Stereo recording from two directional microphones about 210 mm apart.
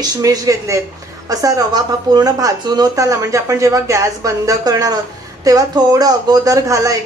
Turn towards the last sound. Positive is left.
turn(degrees=-15)  # may be behind; listen again after turning